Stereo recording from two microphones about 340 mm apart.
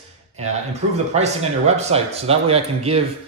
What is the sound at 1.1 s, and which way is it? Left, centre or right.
Speech, centre.